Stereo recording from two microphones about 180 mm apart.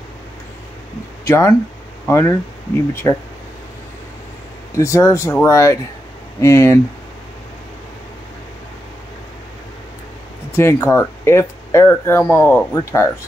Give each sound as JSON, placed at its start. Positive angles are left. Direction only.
{"t": 1.2, "sound": "speech", "side_deg": 15}
{"t": 4.7, "sound": "speech", "side_deg": 15}
{"t": 10.5, "sound": "speech", "side_deg": 15}